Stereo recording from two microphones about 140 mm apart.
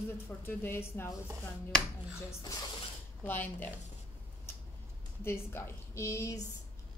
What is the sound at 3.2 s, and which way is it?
Speech, 15° left (ahead or behind).